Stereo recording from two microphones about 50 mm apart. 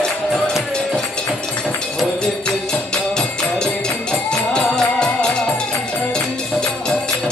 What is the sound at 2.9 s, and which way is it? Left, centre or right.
Music, centre.